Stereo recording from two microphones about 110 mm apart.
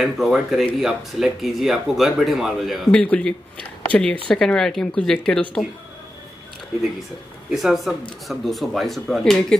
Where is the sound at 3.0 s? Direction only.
10° left (ahead or behind).